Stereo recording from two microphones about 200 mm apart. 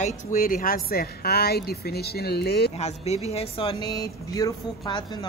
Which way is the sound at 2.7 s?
30° left (ahead or behind).